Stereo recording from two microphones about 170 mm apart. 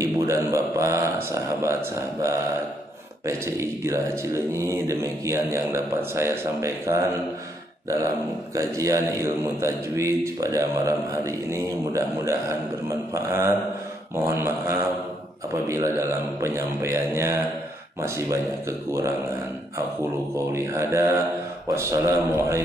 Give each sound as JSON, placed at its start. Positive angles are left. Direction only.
{"t": 0.0, "sound": "speech", "side_deg": -20}
{"t": 3.3, "sound": "speech", "side_deg": -15}
{"t": 8.5, "sound": "speech", "side_deg": -20}
{"t": 20.5, "sound": "speech", "side_deg": -15}